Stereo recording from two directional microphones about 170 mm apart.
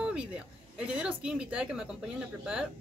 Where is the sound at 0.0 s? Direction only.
5° right (ahead or behind).